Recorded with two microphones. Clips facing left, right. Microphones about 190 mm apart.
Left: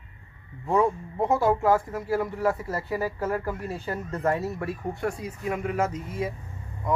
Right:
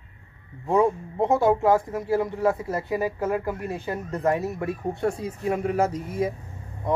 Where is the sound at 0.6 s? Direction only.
20° right (ahead or behind).